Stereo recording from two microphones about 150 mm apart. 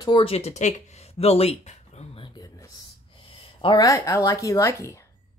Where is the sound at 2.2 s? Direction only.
30° left (ahead or behind).